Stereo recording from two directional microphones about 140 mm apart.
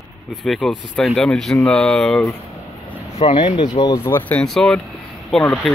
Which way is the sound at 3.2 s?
40° left (ahead or behind).